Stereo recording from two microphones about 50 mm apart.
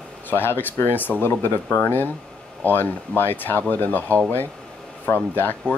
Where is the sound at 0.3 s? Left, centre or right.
Left.